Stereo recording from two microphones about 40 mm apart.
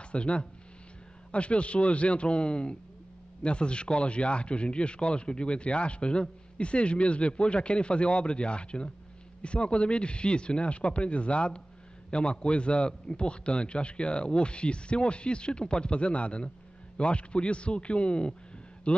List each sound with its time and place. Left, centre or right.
0.1 s speech: left